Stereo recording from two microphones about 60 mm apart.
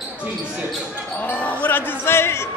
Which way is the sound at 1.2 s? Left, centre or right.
Left.